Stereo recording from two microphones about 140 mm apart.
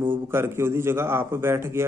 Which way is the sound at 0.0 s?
15° right (ahead or behind).